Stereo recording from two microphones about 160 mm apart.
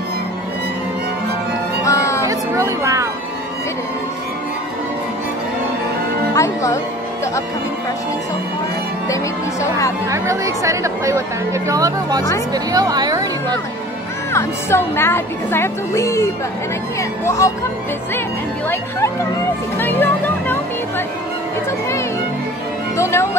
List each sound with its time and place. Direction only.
1.8 s music: 20° left (ahead or behind)
2.2 s music: 20° right (ahead or behind)
6.3 s music: 20° left (ahead or behind)
9.1 s speech: 20° left (ahead or behind)
10.0 s speech: 20° right (ahead or behind)
12.5 s music: 25° right (ahead or behind)
14.3 s speech: 15° left (ahead or behind)
17.4 s speech: 20° left (ahead or behind)
18.7 s speech: 15° left (ahead or behind)
22.9 s speech: 15° left (ahead or behind)